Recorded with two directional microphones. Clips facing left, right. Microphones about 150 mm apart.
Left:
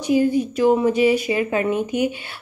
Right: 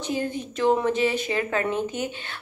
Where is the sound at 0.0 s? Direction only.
10° left (ahead or behind).